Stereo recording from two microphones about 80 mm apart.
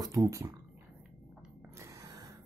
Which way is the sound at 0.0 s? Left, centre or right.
Right.